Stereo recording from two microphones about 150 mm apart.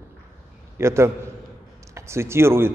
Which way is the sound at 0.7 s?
15° right (ahead or behind).